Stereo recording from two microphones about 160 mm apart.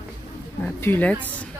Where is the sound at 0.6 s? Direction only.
10° left (ahead or behind).